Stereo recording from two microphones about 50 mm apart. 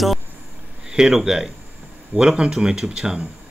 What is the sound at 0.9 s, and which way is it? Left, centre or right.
Speech, centre.